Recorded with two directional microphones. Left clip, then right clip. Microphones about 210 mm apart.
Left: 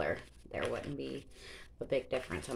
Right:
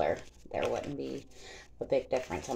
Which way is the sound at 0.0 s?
15° left (ahead or behind).